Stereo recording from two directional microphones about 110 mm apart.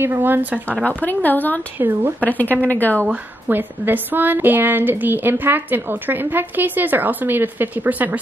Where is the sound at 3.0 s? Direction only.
15° right (ahead or behind).